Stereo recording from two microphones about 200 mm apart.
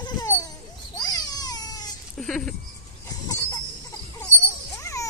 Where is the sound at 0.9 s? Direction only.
20° left (ahead or behind).